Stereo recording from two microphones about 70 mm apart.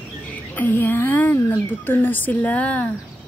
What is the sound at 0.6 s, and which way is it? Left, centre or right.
Speech, left.